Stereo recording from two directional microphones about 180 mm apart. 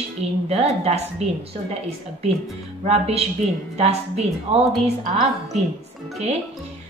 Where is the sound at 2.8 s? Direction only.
35° right (ahead or behind).